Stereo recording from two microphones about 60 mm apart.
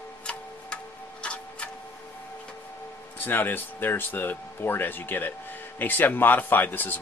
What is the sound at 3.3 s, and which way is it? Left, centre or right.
Speech, left.